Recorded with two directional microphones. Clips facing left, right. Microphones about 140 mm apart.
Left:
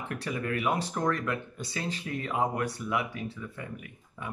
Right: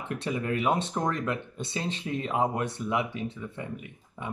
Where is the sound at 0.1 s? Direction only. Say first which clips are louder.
Right 3 dB; 25° right (ahead or behind).